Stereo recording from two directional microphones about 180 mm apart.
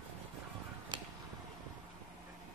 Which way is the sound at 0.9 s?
25° right (ahead or behind).